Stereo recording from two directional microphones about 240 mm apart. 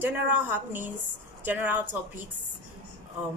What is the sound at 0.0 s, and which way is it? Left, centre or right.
A woman's voice, centre.